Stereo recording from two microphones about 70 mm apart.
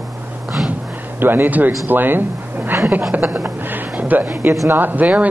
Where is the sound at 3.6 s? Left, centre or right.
Right.